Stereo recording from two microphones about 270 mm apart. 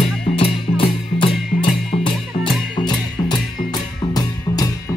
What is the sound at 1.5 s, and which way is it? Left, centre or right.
Music, centre.